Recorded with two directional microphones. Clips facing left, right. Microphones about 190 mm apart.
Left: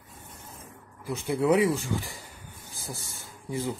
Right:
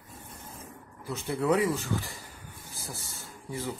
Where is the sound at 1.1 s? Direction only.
15° left (ahead or behind).